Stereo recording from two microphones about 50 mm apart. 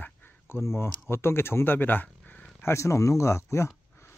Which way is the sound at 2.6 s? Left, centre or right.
Left.